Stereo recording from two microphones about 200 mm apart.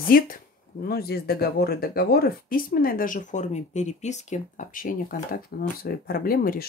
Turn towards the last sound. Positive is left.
turn(degrees=50)  # may be behind; listen again after turning